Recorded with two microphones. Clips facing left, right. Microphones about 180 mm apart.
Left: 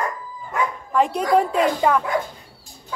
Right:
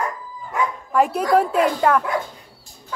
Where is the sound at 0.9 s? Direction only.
5° right (ahead or behind).